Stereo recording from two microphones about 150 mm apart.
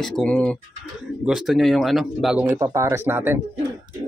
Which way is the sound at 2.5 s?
20° right (ahead or behind).